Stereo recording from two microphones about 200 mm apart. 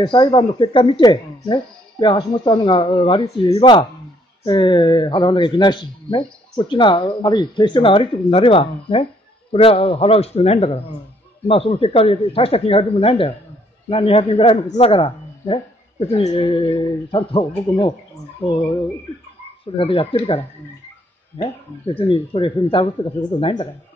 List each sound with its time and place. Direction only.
0.0 s speech: 25° left (ahead or behind)